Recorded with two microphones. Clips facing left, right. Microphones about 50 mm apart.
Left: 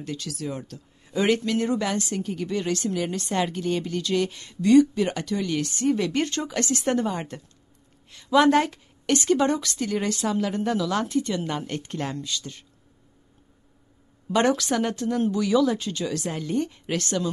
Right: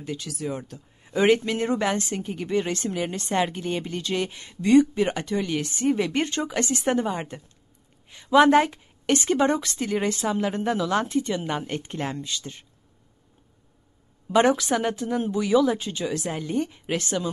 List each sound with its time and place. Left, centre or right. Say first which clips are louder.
0.0 s speech: right 1 dB; centre
14.3 s speech: right 2 dB; centre